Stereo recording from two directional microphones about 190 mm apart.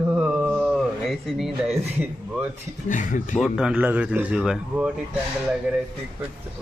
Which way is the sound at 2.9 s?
40° left (ahead or behind).